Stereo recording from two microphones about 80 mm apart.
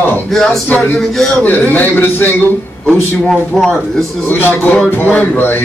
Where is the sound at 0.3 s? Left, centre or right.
Centre.